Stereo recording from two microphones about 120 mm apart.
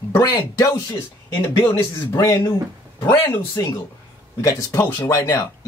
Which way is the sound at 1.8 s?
25° left (ahead or behind).